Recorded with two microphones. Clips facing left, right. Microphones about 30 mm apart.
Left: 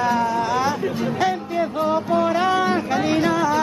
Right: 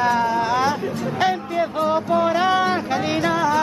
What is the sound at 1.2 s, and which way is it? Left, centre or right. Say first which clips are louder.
Music: right 3 dB; centre.